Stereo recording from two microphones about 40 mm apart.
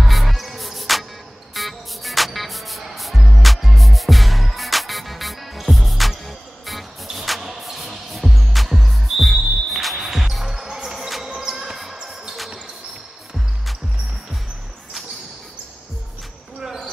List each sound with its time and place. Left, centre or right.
0.0 s music: centre
11.1 s basketball bounce: centre
11.3 s basketball bounce: centre
11.7 s basketball bounce: centre